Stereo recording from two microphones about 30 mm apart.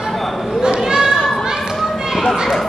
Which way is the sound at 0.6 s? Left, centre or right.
Right.